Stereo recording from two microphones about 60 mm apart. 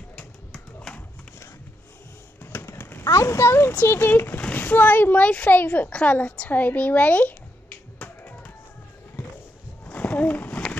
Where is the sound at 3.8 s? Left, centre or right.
Left.